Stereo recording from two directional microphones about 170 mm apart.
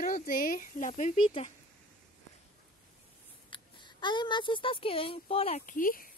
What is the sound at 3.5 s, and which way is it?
Speech, 25° left (ahead or behind).